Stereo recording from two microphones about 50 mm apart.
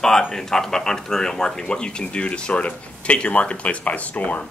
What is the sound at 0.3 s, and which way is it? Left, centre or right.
Speech, centre.